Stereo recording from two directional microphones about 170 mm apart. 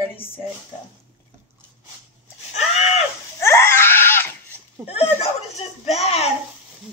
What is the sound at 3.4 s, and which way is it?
Laughter, 15° left (ahead or behind).